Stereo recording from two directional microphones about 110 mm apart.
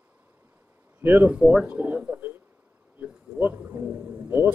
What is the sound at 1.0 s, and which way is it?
Speech, 20° right (ahead or behind).